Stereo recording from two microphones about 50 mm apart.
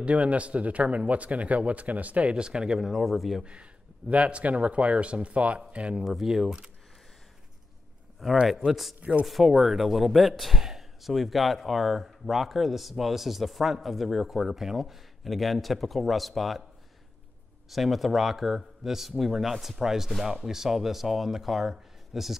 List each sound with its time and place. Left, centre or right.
0.0 s speech: right; by 3.4 s centre
4.1 s speech: right
6.0 s speech: centre
8.2 s speech: centre
17.6 s speech: centre